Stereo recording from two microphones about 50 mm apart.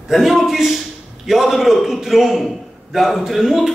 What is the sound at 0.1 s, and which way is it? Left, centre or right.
A man's voice, centre.